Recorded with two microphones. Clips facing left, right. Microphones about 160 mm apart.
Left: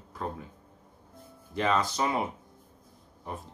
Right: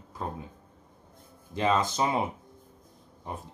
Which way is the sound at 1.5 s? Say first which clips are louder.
Right 1 dB; 20° right (ahead or behind).